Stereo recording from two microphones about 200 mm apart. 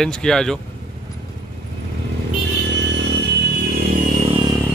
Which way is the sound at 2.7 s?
60° right (ahead or behind).